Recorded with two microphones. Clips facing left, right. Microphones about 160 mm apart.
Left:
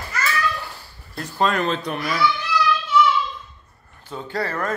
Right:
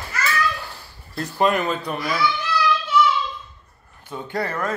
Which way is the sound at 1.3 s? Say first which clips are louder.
Right 1 dB; 10° right (ahead or behind).